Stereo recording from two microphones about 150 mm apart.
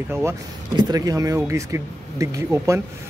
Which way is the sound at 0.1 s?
20° right (ahead or behind).